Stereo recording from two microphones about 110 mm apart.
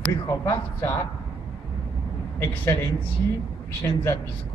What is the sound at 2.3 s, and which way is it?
Speech, 20° left (ahead or behind).